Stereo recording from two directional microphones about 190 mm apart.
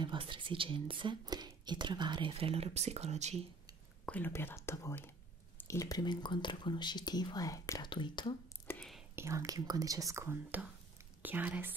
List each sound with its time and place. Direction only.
0.0 s speech: 25° right (ahead or behind)
4.0 s speech: 10° left (ahead or behind); by 8.4 s 25° left (ahead or behind)
8.6 s whispering: 5° left (ahead or behind)
9.1 s speech: 15° right (ahead or behind)